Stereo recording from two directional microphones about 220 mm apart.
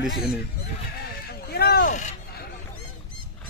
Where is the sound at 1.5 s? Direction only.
45° left (ahead or behind).